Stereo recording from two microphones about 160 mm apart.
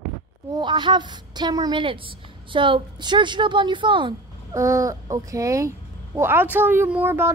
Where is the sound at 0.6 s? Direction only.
30° right (ahead or behind).